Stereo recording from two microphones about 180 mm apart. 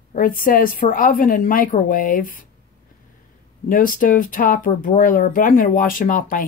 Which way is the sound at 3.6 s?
50° left (ahead or behind).